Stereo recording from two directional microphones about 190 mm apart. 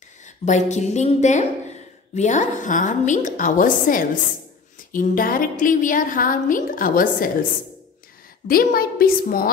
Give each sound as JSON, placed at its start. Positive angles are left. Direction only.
{"t": 0.5, "sound": "a woman's voice", "side_deg": 35}
{"t": 8.5, "sound": "a woman's voice", "side_deg": 50}